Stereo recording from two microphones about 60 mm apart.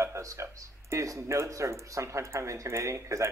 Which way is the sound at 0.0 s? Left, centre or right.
Right.